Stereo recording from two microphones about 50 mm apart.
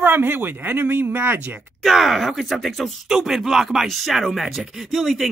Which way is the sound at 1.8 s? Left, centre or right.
Centre.